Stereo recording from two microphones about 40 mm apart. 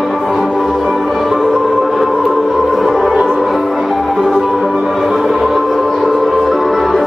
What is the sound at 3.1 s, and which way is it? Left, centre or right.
Music, centre.